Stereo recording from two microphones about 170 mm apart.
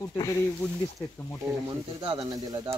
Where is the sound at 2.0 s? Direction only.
25° right (ahead or behind).